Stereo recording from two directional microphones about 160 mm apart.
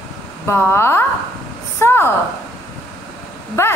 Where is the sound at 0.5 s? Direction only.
15° left (ahead or behind).